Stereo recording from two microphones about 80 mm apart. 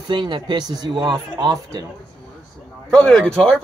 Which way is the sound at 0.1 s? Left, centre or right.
Right.